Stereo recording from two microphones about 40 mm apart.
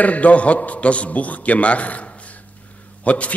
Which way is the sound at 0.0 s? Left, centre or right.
Left.